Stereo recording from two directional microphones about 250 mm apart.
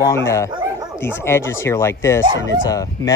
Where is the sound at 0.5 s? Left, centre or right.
Centre.